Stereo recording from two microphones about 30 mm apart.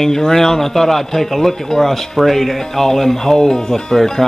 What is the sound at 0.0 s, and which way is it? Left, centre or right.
Speech, centre.